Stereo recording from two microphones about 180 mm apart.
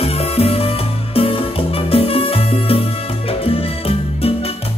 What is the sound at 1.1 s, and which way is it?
Music, 30° left (ahead or behind).